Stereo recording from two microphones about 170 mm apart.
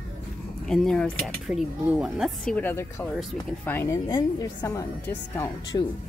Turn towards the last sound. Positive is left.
turn(degrees=20)  # may be behind; listen again after turning